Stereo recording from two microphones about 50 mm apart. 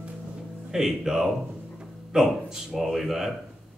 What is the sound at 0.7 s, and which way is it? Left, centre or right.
Speech, centre.